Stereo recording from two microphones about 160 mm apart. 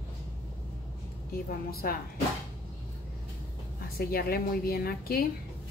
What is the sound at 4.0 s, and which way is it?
A woman's voice, 70° left (ahead or behind).